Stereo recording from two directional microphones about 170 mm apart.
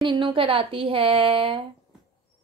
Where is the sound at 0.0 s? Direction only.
30° right (ahead or behind).